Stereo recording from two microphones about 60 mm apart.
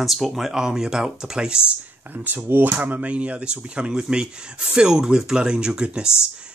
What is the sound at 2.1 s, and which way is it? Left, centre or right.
Speech, right.